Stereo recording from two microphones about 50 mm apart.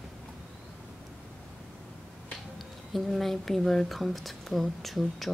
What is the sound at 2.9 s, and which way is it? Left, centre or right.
Speech, centre.